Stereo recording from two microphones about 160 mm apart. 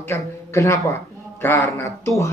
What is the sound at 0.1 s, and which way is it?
Speech, 20° left (ahead or behind).